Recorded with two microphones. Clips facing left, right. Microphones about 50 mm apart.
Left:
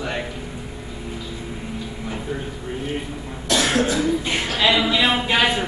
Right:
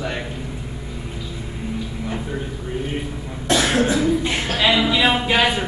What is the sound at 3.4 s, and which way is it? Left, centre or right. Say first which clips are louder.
Cough: right 1 dB; right.